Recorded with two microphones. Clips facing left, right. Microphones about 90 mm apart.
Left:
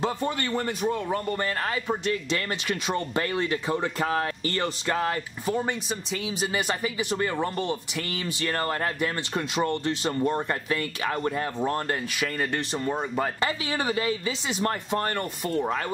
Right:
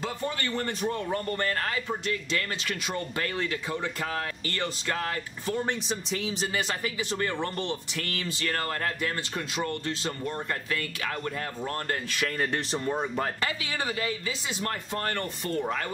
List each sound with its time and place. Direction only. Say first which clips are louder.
0.0 s speech: left 4 dB; 20° left (ahead or behind)
2.9 s speech: left 5 dB; 25° left (ahead or behind)
5.5 s speech: left 2 dB; 5° left (ahead or behind)
6.5 s speech: left 3 dB; 15° left (ahead or behind)
12.4 s speech: left 1 dB; centre (ahead or behind)
13.4 s speech: left 4 dB; 35° left (ahead or behind)
14.5 s speech: left 7 dB; 20° left (ahead or behind)